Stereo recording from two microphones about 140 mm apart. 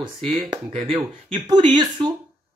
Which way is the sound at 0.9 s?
35° right (ahead or behind).